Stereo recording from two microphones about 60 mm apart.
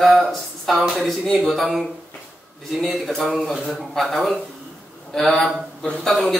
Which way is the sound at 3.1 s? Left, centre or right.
Centre.